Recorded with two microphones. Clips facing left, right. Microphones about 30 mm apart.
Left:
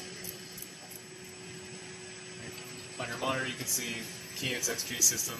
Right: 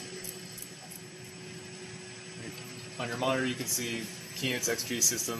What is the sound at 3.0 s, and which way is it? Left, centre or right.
Speech, centre.